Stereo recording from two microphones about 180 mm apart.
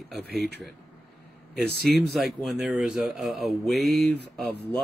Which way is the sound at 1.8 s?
Centre (ahead or behind).